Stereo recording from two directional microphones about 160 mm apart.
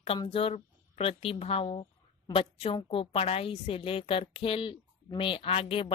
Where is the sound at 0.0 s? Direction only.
35° left (ahead or behind).